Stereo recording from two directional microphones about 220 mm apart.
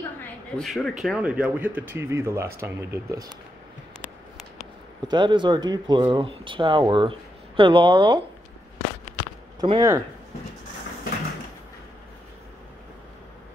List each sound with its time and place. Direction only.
0.6 s speech: centre (ahead or behind)
5.0 s speech: 20° right (ahead or behind)
9.6 s speech: 20° right (ahead or behind)